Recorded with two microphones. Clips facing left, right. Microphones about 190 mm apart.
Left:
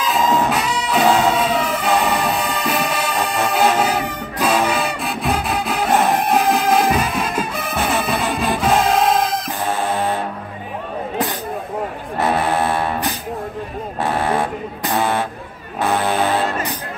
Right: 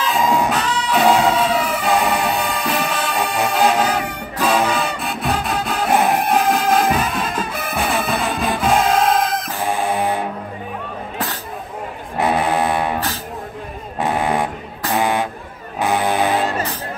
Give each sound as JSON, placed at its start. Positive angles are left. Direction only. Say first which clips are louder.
{"t": 0.5, "sound": "music", "louder": "even", "side_deg": 10}
{"t": 9.7, "sound": "music", "louder": "right 1 dB", "side_deg": -15}
{"t": 12.2, "sound": "foghorn", "louder": "right 1 dB", "side_deg": -15}
{"t": 14.0, "sound": "a sound", "louder": "even", "side_deg": -15}
{"t": 15.8, "sound": "music", "louder": "even", "side_deg": -15}